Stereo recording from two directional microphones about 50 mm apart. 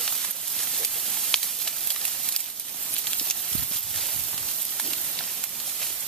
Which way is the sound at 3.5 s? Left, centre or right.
Centre.